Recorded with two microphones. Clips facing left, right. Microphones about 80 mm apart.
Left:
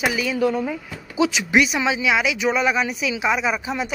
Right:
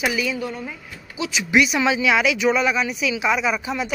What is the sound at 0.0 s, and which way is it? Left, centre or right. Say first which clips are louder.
Speech: even; left.